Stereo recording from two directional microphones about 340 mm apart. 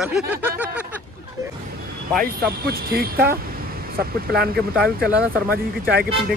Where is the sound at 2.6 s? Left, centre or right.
Right.